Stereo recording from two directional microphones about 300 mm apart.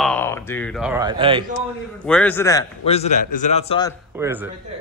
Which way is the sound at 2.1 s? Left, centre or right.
Centre.